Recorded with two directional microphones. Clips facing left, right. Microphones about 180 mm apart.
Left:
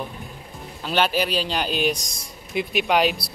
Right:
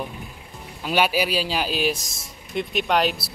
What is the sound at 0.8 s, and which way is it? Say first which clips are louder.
Speech: right 1 dB; 10° right (ahead or behind).